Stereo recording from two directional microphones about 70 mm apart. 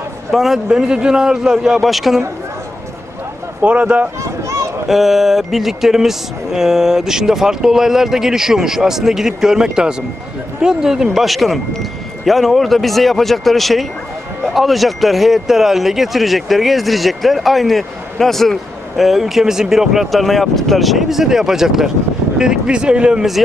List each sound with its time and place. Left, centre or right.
0.3 s a man's voice: centre
3.6 s speech: centre
4.2 s a sound: right
4.8 s speech: centre